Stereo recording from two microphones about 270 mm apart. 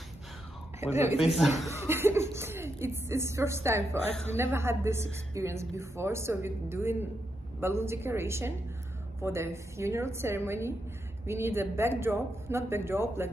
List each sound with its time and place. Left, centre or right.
0.7 s speech: centre